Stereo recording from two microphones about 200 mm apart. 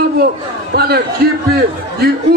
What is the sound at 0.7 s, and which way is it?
Speech, 50° right (ahead or behind).